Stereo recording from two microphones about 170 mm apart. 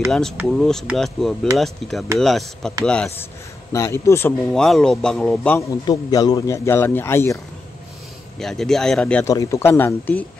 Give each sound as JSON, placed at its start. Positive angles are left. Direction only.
{"t": 0.1, "sound": "speech", "side_deg": 5}
{"t": 3.7, "sound": "a man's voice", "side_deg": 15}
{"t": 4.5, "sound": "speech", "side_deg": 5}
{"t": 5.6, "sound": "a man's voice", "side_deg": 20}
{"t": 8.4, "sound": "speech", "side_deg": 0}
{"t": 9.3, "sound": "a man's voice", "side_deg": 20}